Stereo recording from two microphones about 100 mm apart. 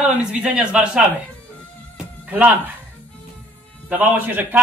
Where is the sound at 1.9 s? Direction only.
15° right (ahead or behind).